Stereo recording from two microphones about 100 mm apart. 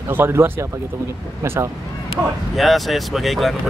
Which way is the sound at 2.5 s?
Centre (ahead or behind).